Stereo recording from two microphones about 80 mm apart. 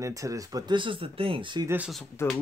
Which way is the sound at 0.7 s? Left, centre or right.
Right.